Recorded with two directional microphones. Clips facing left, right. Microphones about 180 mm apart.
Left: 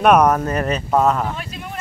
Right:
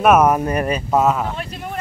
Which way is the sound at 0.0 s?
5° right (ahead or behind).